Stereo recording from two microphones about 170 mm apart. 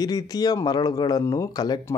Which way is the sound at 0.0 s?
20° left (ahead or behind).